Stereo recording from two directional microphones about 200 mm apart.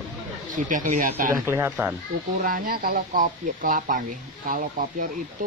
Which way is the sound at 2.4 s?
45° right (ahead or behind).